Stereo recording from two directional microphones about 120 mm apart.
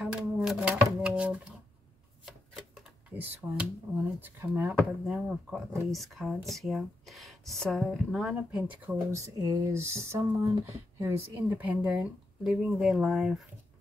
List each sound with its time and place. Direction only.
0.0 s a sound: 5° right (ahead or behind)
2.2 s shuffling cards: 5° right (ahead or behind)
3.2 s speech: 15° right (ahead or behind)
9.1 s speech: 30° right (ahead or behind); by 13.5 s 5° right (ahead or behind)